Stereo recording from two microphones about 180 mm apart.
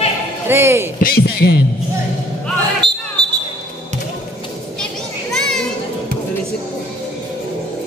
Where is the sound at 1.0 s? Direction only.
60° left (ahead or behind).